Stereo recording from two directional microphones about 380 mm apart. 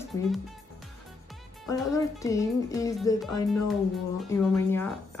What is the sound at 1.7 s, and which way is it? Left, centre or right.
Speech, centre.